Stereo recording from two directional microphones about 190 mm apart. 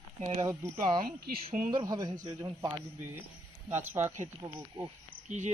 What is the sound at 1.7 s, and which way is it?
Speech, 20° right (ahead or behind).